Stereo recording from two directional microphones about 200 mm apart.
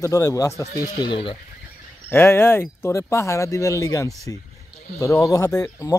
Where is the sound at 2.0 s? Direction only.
10° left (ahead or behind).